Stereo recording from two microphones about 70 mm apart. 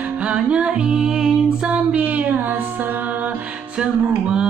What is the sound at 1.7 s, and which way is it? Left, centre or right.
Music, right.